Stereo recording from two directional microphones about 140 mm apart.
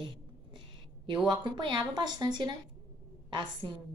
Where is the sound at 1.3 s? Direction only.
35° right (ahead or behind).